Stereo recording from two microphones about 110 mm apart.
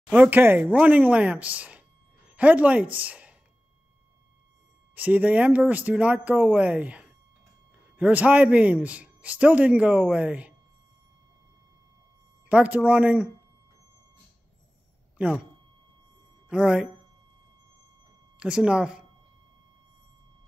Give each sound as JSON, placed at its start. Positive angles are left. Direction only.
{"t": 0.1, "sound": "a man's voice", "side_deg": -15}
{"t": 4.9, "sound": "a man's voice", "side_deg": -15}
{"t": 12.4, "sound": "a man's voice", "side_deg": -15}
{"t": 15.2, "sound": "a man's voice", "side_deg": -15}
{"t": 16.4, "sound": "a man's voice", "side_deg": -10}
{"t": 18.4, "sound": "a man's voice", "side_deg": -10}